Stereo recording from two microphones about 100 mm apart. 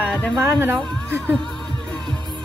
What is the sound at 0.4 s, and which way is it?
Speech, 25° right (ahead or behind).